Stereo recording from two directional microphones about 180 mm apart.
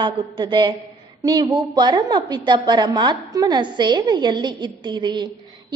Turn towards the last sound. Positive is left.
turn(degrees=-25)  # may be behind; listen again after turning